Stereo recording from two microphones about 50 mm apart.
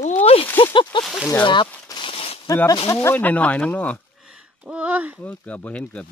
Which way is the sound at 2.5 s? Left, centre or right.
Left.